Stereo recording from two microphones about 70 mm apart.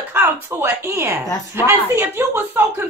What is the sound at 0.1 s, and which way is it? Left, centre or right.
A woman's voice, right.